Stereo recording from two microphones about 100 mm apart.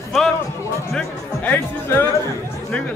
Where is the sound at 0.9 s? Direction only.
20° left (ahead or behind).